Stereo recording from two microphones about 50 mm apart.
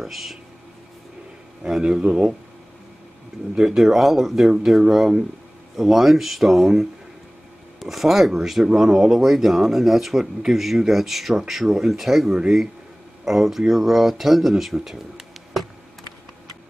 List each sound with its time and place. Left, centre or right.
0.0 s speech: centre
1.6 s speech: centre
3.5 s speech: centre